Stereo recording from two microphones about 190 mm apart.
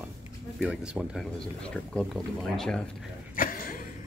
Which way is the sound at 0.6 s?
5° right (ahead or behind).